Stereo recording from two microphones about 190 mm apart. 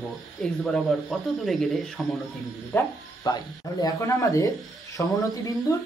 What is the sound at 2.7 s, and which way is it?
Speech, 20° left (ahead or behind).